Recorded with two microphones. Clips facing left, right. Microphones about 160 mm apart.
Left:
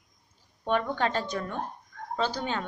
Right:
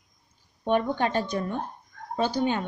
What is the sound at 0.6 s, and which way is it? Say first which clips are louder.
A woman's voice: right 3 dB; 20° right (ahead or behind).